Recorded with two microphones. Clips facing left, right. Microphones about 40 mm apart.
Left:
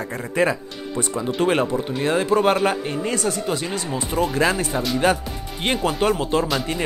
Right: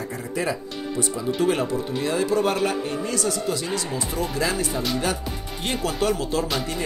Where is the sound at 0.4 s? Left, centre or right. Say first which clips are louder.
Left 6 dB; left.